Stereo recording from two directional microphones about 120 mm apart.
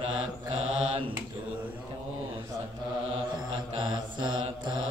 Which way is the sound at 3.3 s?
40° right (ahead or behind).